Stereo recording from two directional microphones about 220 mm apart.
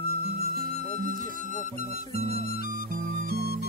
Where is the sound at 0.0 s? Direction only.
45° right (ahead or behind).